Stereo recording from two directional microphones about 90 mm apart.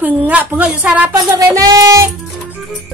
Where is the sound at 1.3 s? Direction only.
40° right (ahead or behind).